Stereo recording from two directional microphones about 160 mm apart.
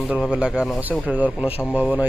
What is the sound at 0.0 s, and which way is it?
Speech, 10° right (ahead or behind).